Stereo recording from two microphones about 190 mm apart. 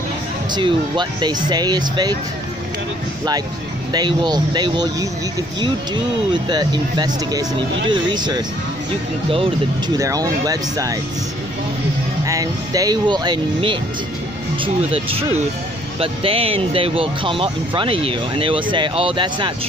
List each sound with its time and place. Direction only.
0.5 s speech: 25° right (ahead or behind)
3.9 s speech: 20° right (ahead or behind)
6.3 s speech: 25° right (ahead or behind)
9.9 s speech: 15° right (ahead or behind)
12.3 s speech: 20° right (ahead or behind)